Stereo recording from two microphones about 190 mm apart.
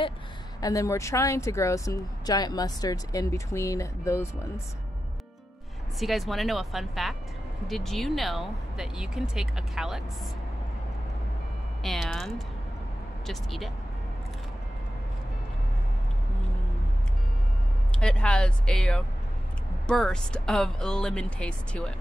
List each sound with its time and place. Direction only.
0.6 s speech: 15° left (ahead or behind)
5.9 s speech: centre (ahead or behind)
11.8 s speech: centre (ahead or behind)
17.9 s speech: 5° left (ahead or behind)